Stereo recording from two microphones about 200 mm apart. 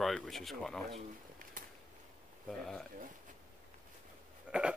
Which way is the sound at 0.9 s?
45° right (ahead or behind).